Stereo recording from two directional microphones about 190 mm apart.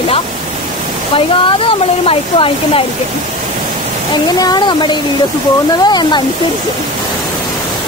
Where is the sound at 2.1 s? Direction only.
30° left (ahead or behind).